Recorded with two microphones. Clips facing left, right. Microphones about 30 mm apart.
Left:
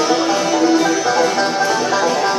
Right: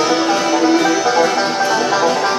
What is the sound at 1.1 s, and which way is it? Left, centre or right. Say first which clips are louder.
Music: right 1 dB; centre.